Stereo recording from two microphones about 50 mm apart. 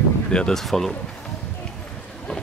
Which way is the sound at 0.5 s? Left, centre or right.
Centre.